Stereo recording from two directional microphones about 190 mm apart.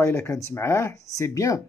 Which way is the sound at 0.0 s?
15° left (ahead or behind).